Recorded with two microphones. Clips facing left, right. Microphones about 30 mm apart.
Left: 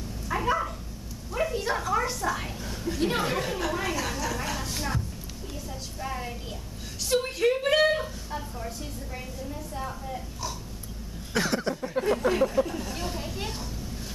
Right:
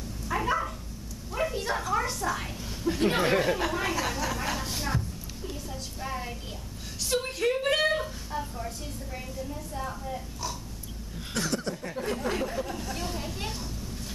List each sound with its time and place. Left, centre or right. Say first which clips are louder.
0.3 s dog: left 1 dB; centre
1.3 s a sound: left 2 dB; centre
2.9 s speech: right 2 dB; centre
5.5 s a sound: left 1 dB; centre
11.3 s speech: left 4 dB; centre
12.0 s speech: left 7 dB; centre
12.6 s chatter: left 1 dB; centre